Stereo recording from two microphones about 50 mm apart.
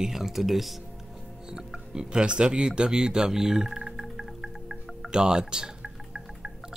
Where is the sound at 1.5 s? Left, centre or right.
Centre.